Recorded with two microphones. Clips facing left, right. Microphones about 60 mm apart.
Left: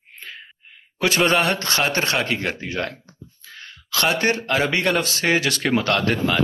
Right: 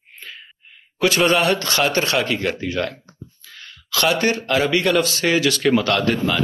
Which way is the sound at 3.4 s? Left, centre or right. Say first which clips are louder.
Left 1 dB; left.